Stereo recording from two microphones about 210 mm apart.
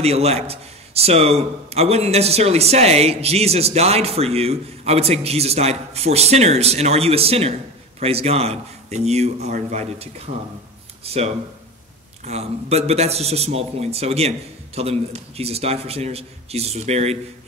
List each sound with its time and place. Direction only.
0.0 s a man's voice: 30° right (ahead or behind)